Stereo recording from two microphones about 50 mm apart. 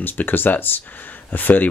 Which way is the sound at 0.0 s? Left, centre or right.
Left.